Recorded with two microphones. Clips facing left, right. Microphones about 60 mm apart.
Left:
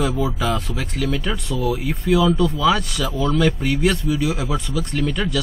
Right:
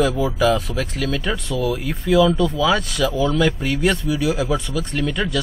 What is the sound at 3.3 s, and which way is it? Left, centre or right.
A man's voice, centre.